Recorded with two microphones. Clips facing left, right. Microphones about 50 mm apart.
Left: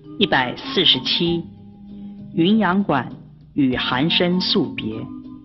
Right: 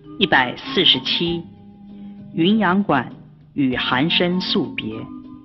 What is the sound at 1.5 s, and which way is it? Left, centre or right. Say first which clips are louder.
Music: left 1 dB; right.